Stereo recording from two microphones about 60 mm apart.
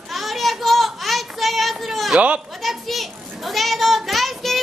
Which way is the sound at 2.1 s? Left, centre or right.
Right.